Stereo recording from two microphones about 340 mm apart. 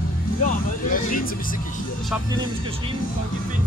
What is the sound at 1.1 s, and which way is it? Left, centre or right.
Music, left.